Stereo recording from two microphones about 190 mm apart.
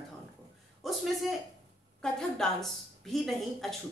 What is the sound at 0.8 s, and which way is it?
Speech, centre (ahead or behind).